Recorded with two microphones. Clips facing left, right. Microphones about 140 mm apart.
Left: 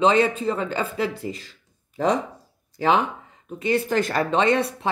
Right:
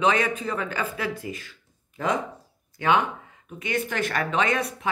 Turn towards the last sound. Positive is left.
turn(degrees=30)  # may be behind; listen again after turning